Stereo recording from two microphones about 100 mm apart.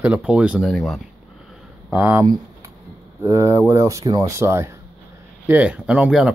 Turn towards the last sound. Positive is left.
turn(degrees=-10)  # may be behind; listen again after turning